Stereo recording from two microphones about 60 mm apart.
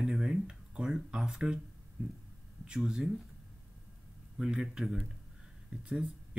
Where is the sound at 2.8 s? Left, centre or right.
Centre.